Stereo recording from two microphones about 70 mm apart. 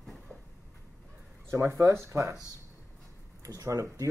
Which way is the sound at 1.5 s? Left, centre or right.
Right.